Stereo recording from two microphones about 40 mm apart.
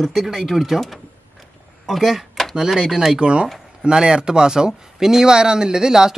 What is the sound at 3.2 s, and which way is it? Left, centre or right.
Speech, right.